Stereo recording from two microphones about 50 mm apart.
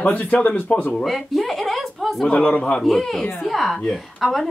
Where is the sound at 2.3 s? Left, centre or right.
Left.